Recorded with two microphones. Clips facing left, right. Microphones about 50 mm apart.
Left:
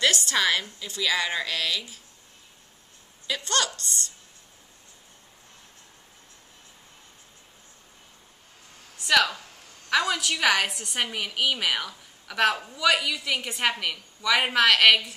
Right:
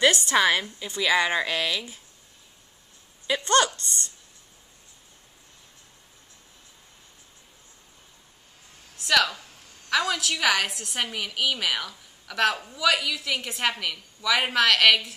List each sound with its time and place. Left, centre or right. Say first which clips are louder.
0.0 s a woman's voice: right 3 dB; right
3.3 s a woman's voice: right 6 dB; right
8.9 s a woman's voice: left 1 dB; centre